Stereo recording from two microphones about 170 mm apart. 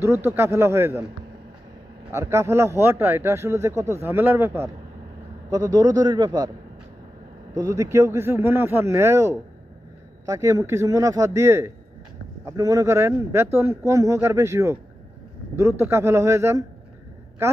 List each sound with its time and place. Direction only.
0.0 s a man's voice: 15° right (ahead or behind)
2.1 s a man's voice: 15° right (ahead or behind)
7.5 s a man's voice: 20° right (ahead or behind)
15.8 s a man's voice: 15° right (ahead or behind)